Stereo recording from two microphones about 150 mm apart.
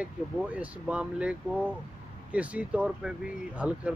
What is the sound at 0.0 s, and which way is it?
Speech, 10° right (ahead or behind).